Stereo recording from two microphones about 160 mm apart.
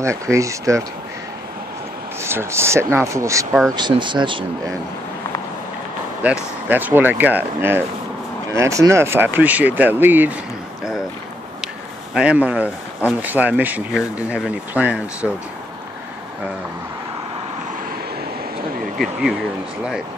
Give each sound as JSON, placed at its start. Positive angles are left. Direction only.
{"t": 0.0, "sound": "speech", "side_deg": -20}
{"t": 2.2, "sound": "speech", "side_deg": -15}
{"t": 6.2, "sound": "speech", "side_deg": -10}
{"t": 12.1, "sound": "speech", "side_deg": -5}